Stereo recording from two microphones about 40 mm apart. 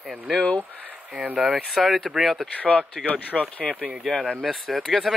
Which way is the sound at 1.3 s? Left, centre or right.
Centre.